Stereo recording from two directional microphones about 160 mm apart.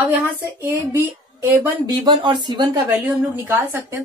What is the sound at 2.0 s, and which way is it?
Speech, 30° right (ahead or behind).